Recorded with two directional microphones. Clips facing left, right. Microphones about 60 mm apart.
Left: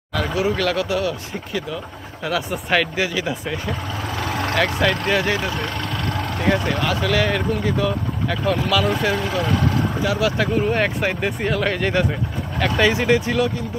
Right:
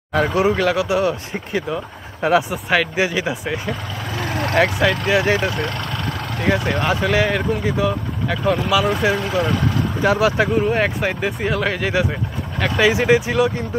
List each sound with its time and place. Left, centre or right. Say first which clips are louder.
0.1 s speech: right 4 dB; right
2.5 s speech: right 1 dB; centre
3.0 s speech: right 3 dB; centre
4.7 s speech: right 2 dB; centre
5.2 s speech: right 4 dB; right
6.4 s speech: right 1 dB; centre
6.8 s speech: right 2 dB; right
7.2 s speech: right 1 dB; centre
10.1 s speech: right 4 dB; right
10.7 s speech: right 1 dB; centre
12.9 s speech: right 2 dB; centre